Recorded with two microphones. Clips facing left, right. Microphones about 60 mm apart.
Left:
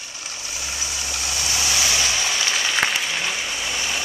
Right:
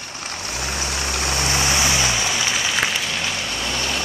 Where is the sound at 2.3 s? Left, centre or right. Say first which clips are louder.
Right 1 dB; centre.